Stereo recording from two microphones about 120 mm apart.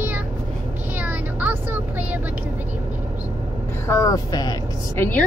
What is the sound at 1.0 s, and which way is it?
Vehicle, 15° right (ahead or behind).